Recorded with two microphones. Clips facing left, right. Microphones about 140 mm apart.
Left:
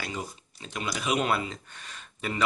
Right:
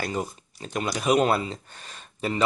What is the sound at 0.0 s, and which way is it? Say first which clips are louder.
Speech: right 6 dB; 45° right (ahead or behind).